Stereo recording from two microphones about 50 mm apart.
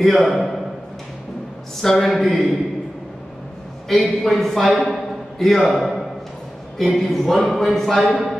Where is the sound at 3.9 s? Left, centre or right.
Centre.